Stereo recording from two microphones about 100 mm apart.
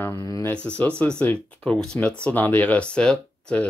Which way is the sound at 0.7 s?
15° left (ahead or behind).